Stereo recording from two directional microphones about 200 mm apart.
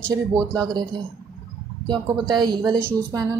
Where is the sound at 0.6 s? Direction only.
20° right (ahead or behind).